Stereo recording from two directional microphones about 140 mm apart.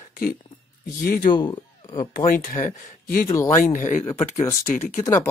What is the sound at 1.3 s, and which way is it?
Speech, 35° left (ahead or behind).